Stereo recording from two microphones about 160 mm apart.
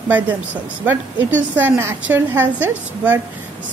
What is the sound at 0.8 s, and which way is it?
A woman's voice, 10° right (ahead or behind).